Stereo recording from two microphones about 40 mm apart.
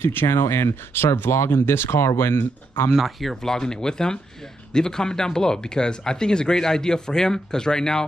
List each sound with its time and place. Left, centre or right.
0.0 s speech: left
2.9 s speech: centre
3.3 s speech: centre